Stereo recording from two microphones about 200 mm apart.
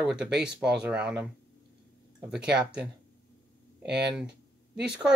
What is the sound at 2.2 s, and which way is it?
Speech, 5° right (ahead or behind).